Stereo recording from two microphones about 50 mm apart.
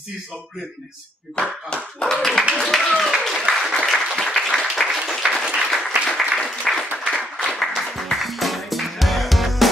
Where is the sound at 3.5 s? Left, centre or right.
Right.